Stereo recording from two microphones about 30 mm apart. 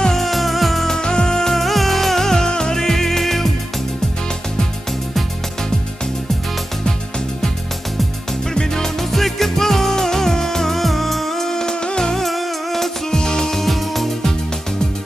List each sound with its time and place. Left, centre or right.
0.1 s music: centre
0.8 s music: left
1.6 s music: centre
8.5 s music: centre
11.7 s music: left
12.0 s music: centre
12.3 s music: centre
13.1 s music: left; by 14.0 s centre